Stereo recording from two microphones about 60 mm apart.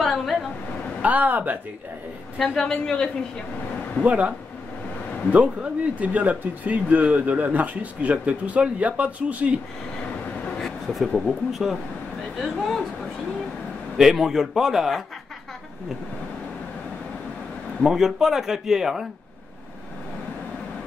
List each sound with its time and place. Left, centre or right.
0.0 s a sound: centre
1.0 s speech: right
2.3 s a woman's voice: centre
4.0 s speech: right
5.3 s speech: right
10.6 s vehicle: centre
11.2 s a man's voice: centre
13.9 s a man's voice: centre
17.8 s speech: centre